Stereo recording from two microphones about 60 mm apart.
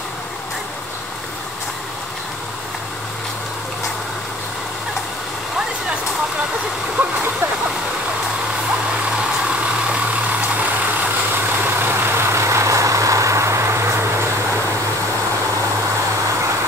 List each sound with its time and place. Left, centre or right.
7.0 s a sound: right
9.8 s vehicle: right
11.8 s vehicle: right